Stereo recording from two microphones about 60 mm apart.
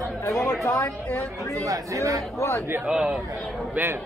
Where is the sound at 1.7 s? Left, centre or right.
Right.